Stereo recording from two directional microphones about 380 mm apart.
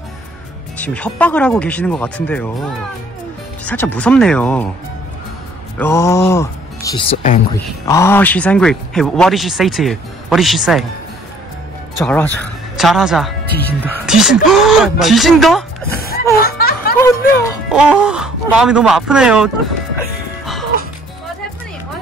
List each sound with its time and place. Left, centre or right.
0.7 s speech: centre
3.6 s speech: centre
5.8 s speech: centre
12.0 s speech: centre
16.3 s a sound: left
17.0 s music: centre
17.6 s speech: centre